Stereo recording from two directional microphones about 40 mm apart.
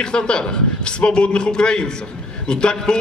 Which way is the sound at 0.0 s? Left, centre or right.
Left.